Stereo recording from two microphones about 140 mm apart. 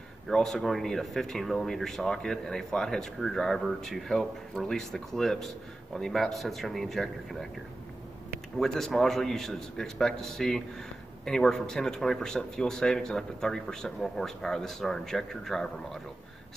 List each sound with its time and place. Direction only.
0.3 s speech: 5° left (ahead or behind)
8.5 s speech: 5° left (ahead or behind)